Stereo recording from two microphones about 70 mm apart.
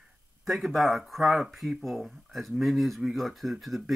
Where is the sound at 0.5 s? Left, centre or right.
Centre.